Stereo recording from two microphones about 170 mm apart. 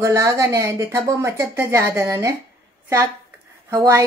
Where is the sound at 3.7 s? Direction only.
20° right (ahead or behind).